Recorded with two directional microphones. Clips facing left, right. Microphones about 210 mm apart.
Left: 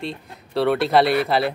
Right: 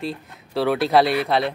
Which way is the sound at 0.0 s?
Centre (ahead or behind).